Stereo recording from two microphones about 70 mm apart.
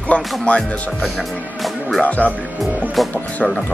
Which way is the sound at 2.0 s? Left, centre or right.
Left.